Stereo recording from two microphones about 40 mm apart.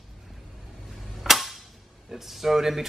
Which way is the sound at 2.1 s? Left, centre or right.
Centre.